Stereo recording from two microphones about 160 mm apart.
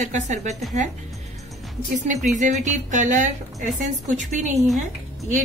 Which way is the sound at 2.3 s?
50° right (ahead or behind).